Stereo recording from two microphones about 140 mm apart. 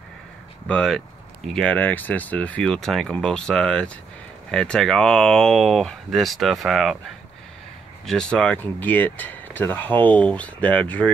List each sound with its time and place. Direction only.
0.7 s speech: 5° left (ahead or behind)
8.0 s speech: 5° left (ahead or behind)